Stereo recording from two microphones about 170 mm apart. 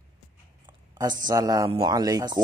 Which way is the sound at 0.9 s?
25° right (ahead or behind).